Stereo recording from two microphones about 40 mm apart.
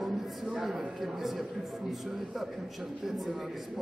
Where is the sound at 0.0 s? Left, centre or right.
Centre.